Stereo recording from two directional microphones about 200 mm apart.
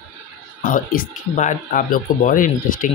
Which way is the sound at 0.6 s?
45° left (ahead or behind).